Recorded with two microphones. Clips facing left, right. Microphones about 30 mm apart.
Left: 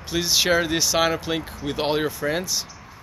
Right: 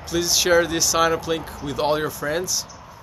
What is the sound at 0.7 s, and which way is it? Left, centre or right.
Speech, left.